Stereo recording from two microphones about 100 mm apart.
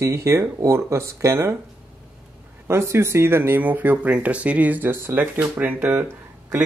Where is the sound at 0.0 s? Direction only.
30° right (ahead or behind).